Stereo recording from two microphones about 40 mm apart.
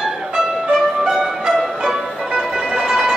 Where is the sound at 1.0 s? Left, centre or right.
Centre.